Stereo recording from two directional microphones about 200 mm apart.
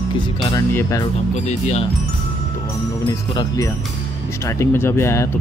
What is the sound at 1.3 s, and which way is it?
Speech, 35° left (ahead or behind).